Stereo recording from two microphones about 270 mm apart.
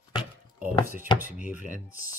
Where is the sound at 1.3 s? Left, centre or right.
Left.